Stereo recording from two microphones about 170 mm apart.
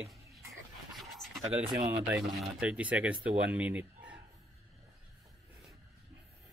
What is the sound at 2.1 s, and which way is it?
Speech, 5° right (ahead or behind).